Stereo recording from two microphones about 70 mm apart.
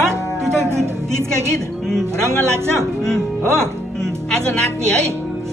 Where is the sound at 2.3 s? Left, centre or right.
Right.